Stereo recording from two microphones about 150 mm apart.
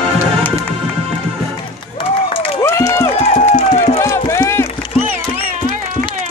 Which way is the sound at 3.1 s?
45° left (ahead or behind).